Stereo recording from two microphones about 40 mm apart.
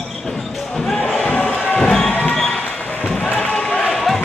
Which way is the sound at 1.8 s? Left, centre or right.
Centre.